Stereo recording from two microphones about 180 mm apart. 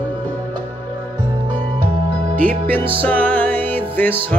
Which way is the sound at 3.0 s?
10° left (ahead or behind).